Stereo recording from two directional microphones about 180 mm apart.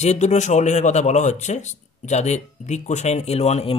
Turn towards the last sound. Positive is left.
turn(degrees=35)  # may be behind; listen again after turning